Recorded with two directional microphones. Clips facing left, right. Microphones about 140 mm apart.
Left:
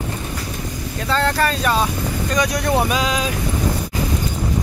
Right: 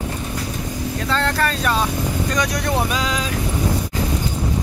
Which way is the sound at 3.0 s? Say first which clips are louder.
Left 2 dB; 15° left (ahead or behind).